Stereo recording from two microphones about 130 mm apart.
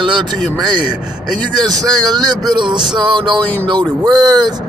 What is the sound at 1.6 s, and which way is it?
Speech, 30° right (ahead or behind).